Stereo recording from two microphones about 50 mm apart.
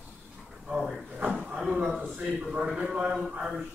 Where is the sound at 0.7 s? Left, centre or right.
Centre.